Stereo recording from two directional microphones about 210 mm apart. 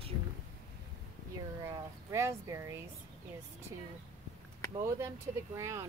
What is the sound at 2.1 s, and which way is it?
Speech, 15° right (ahead or behind).